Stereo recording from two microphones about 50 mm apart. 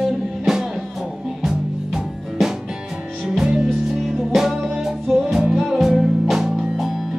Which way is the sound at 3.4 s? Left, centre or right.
Centre.